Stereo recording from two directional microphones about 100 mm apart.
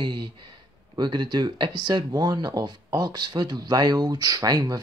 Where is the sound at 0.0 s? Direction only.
50° right (ahead or behind).